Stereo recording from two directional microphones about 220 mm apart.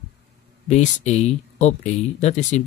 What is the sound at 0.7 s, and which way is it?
Speech, 30° left (ahead or behind).